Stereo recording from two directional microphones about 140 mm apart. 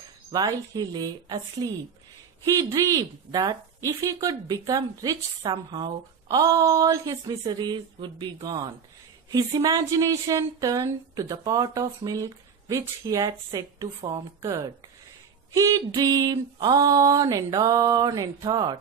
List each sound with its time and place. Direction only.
0.3 s speech: 25° right (ahead or behind)
15.5 s speech: 25° right (ahead or behind)